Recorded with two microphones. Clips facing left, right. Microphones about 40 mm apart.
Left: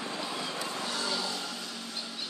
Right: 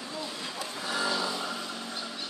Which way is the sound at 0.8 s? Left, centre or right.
Centre.